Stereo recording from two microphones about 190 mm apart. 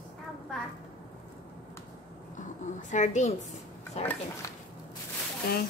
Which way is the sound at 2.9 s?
40° left (ahead or behind).